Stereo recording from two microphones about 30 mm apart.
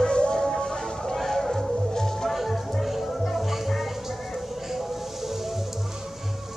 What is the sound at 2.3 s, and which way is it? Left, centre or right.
Music, centre.